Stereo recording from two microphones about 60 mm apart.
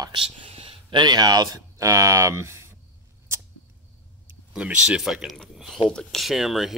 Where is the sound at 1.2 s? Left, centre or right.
Right.